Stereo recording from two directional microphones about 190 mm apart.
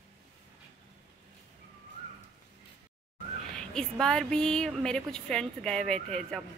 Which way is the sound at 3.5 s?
5° left (ahead or behind).